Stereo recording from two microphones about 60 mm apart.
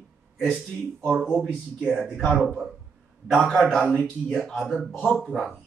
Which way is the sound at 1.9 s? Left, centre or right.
Centre.